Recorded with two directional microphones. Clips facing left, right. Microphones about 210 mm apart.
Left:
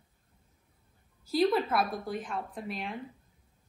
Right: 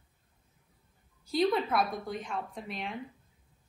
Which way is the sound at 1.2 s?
Centre (ahead or behind).